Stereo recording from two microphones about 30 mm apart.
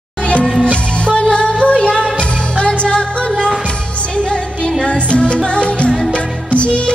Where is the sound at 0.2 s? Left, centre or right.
Left.